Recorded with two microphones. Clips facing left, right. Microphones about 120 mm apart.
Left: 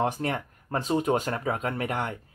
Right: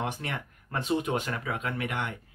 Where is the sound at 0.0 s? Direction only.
35° left (ahead or behind).